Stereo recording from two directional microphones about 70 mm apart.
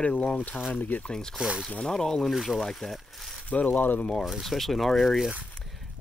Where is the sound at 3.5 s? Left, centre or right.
Left.